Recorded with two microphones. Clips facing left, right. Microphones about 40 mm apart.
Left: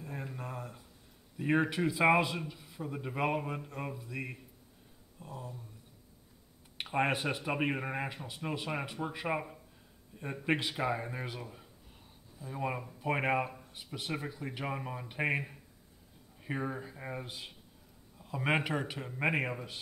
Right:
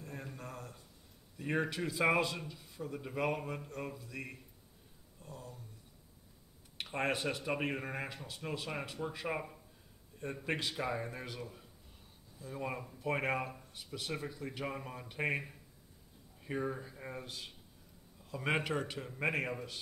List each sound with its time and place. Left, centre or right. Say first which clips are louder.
0.0 s a sound: left 4 dB; centre
1.4 s speech: left 6 dB; centre
6.8 s speech: left 4 dB; centre